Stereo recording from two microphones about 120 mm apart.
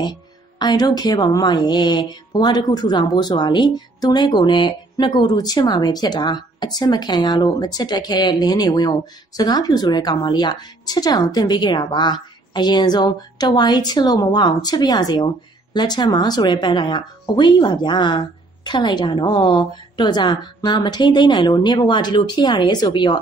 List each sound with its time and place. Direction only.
0.0 s speech: 35° left (ahead or behind)